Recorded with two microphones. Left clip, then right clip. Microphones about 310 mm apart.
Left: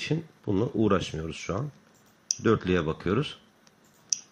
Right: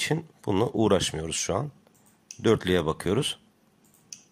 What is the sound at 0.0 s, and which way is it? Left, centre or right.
Speech, right.